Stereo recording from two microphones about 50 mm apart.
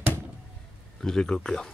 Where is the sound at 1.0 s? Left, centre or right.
Centre.